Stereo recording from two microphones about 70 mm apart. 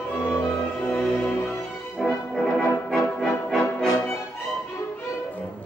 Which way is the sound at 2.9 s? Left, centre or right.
Centre.